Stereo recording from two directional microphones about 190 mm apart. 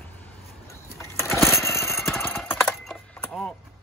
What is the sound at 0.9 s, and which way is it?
Lawn mower, 15° left (ahead or behind).